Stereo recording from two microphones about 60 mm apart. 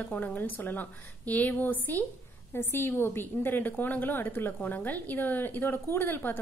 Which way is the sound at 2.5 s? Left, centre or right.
Left.